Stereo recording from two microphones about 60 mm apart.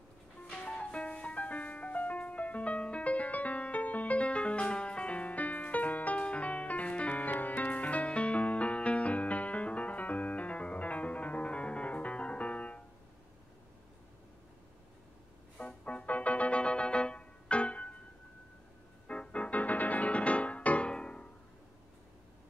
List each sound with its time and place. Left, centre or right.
0.5 s music: centre
15.6 s music: left
19.0 s music: left